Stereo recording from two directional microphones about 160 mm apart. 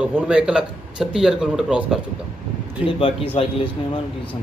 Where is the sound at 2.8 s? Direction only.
35° left (ahead or behind).